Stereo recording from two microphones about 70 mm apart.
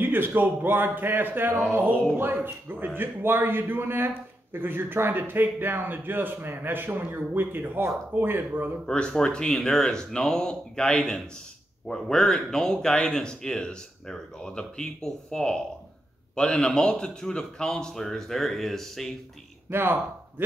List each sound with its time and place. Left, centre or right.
0.0 s a man's voice: right
8.8 s speech: centre
19.7 s speech: right